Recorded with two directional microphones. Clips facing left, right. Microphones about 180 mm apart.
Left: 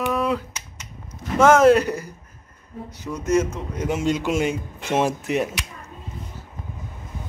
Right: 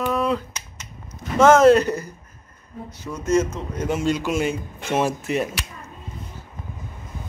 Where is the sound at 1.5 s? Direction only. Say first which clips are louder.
Right 1 dB; 10° left (ahead or behind).